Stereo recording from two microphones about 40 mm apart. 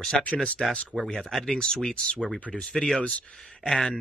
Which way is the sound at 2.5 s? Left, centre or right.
Centre.